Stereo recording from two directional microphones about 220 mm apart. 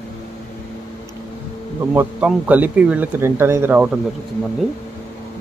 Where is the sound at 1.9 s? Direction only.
5° right (ahead or behind).